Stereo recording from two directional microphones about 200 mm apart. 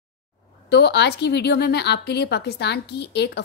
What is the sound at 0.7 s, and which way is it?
A woman's voice, 55° left (ahead or behind).